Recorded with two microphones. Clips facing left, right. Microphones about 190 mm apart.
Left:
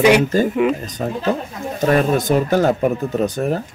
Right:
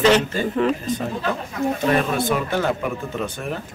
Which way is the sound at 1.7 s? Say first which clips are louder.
Left 7 dB; 40° left (ahead or behind).